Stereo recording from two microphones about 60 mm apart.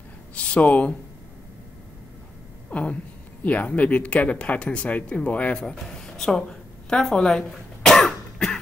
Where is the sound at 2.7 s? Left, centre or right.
Left.